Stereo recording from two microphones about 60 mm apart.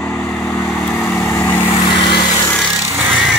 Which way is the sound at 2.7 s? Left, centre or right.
Right.